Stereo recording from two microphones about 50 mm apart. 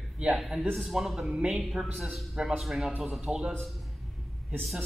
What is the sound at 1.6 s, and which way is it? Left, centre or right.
A man's voice, centre.